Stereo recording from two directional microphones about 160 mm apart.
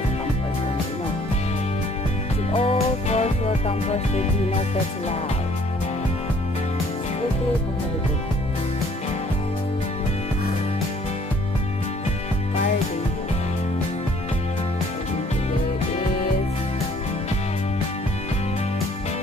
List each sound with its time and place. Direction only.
2.5 s music: 35° left (ahead or behind)